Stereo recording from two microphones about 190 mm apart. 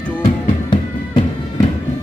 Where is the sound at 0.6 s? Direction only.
25° left (ahead or behind).